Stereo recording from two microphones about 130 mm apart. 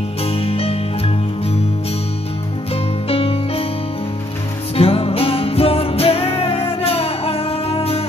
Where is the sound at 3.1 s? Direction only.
50° left (ahead or behind).